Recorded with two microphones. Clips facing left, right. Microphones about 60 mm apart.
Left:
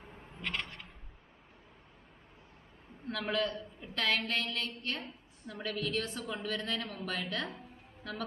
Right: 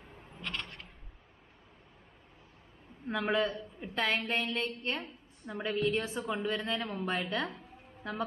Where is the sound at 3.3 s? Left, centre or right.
Centre.